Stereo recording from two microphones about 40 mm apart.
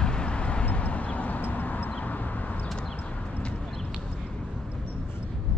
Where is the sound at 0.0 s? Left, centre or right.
Left.